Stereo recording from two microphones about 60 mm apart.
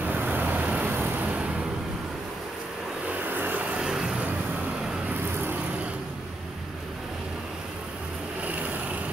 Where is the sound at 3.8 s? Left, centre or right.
Centre.